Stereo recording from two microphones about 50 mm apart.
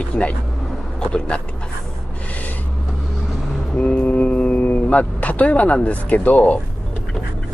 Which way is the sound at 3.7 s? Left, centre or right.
Left.